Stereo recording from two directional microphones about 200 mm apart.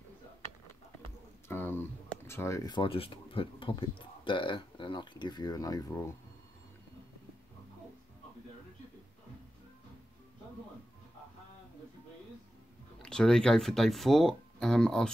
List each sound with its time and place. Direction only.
1.5 s a sound: 10° left (ahead or behind); by 3.9 s 25° left (ahead or behind)
4.2 s speech: 25° left (ahead or behind)
13.0 s speech: 5° left (ahead or behind)